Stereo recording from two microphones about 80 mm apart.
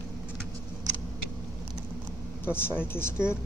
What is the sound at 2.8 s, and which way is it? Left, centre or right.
Speech, left.